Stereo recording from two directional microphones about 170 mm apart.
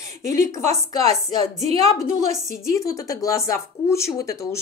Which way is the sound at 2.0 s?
20° left (ahead or behind).